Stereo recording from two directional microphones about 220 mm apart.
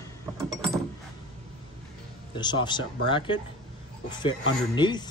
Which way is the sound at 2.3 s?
20° left (ahead or behind).